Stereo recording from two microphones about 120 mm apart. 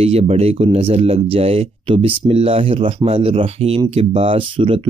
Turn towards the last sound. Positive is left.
turn(degrees=-50)  # may be behind; listen again after turning